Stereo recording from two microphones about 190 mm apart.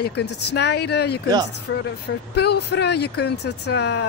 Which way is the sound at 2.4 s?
60° left (ahead or behind).